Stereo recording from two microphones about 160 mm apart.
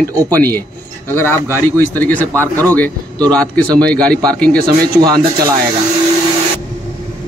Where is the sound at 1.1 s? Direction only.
15° left (ahead or behind).